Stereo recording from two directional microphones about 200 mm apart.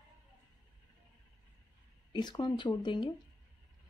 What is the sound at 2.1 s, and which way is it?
Speech, 20° left (ahead or behind).